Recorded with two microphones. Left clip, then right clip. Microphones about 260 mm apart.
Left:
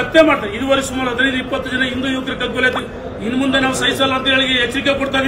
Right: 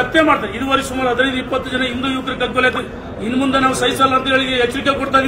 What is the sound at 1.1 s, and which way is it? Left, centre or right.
Speech, centre.